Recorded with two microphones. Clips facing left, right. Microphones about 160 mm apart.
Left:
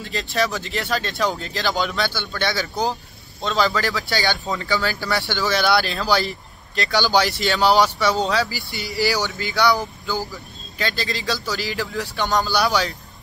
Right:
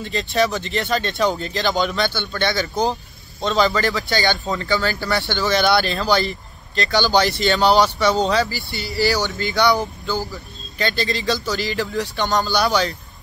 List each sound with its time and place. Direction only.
0.0 s speech: centre (ahead or behind)
8.7 s speech: 15° left (ahead or behind)
9.4 s speech: 5° left (ahead or behind)
9.8 s speech: 20° right (ahead or behind)
10.8 s speech: centre (ahead or behind)